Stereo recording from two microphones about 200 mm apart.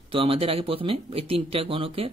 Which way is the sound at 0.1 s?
25° right (ahead or behind).